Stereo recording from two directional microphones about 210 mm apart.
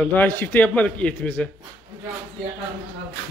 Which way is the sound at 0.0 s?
5° left (ahead or behind).